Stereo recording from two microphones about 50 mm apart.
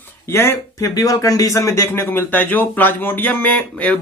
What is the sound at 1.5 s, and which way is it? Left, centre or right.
Speech, left.